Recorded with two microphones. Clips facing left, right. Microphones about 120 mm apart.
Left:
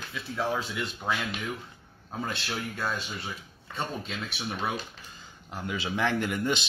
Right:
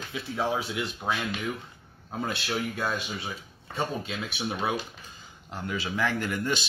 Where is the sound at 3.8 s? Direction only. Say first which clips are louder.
Right 3 dB; centre (ahead or behind).